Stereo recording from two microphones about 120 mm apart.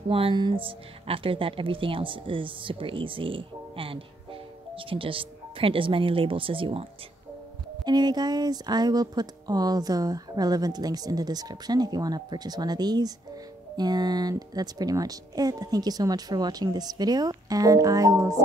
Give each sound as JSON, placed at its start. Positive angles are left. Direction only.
{"t": 0.1, "sound": "a woman's voice", "side_deg": -45}
{"t": 7.8, "sound": "speech", "side_deg": -35}